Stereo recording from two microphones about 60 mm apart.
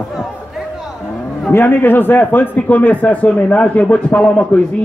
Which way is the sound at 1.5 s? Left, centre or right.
Left.